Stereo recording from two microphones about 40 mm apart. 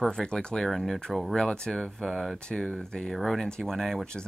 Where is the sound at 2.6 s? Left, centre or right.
Centre.